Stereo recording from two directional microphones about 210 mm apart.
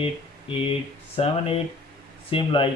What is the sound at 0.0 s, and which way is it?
Speech, 25° left (ahead or behind).